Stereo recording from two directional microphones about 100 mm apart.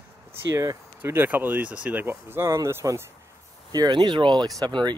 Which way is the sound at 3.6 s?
45° right (ahead or behind).